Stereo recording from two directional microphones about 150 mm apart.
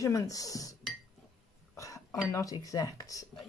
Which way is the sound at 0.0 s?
20° left (ahead or behind).